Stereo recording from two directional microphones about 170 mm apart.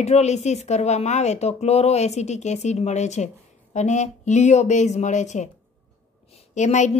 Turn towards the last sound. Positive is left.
turn(degrees=45)  # may be behind; listen again after turning